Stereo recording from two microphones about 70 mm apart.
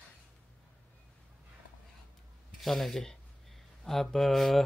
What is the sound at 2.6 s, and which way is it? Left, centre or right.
Speech, centre.